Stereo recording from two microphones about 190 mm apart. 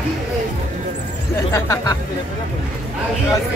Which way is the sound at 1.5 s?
15° left (ahead or behind).